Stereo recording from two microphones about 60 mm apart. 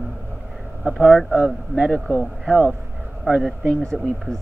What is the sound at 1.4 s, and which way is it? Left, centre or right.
Speech, centre.